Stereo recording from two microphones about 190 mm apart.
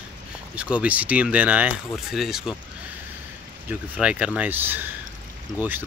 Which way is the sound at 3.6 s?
5° right (ahead or behind).